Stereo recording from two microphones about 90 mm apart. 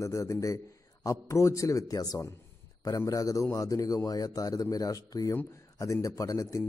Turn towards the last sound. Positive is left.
turn(degrees=40)  # may be behind; listen again after turning